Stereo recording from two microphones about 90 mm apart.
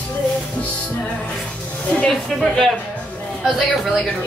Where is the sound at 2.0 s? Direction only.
5° left (ahead or behind).